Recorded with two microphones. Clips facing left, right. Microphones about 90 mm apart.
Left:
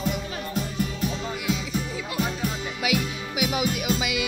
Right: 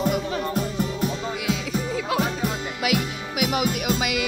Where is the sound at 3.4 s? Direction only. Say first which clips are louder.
Right 2 dB; 55° right (ahead or behind).